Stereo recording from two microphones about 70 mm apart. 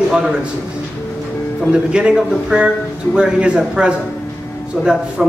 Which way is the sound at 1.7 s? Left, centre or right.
Centre.